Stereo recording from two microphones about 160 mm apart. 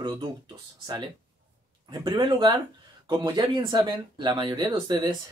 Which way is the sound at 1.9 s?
25° right (ahead or behind).